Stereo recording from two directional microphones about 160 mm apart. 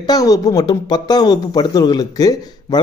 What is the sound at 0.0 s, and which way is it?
Speech, 25° left (ahead or behind).